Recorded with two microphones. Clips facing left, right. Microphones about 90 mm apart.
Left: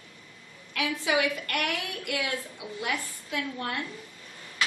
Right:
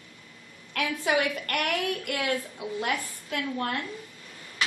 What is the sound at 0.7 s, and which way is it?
A woman's voice, 50° right (ahead or behind).